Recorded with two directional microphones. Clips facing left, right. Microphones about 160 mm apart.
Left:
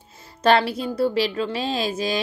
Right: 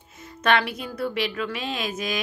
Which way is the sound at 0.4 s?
35° left (ahead or behind).